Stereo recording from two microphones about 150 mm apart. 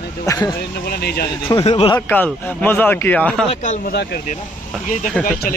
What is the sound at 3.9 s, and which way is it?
Speech, 90° left.